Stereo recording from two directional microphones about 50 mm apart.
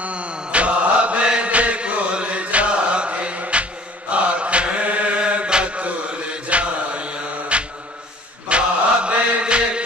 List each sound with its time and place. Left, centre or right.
0.0 s mantra: right